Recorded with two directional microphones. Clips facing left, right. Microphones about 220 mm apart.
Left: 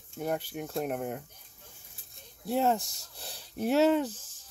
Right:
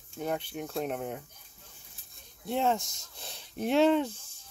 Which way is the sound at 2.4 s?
5° left (ahead or behind).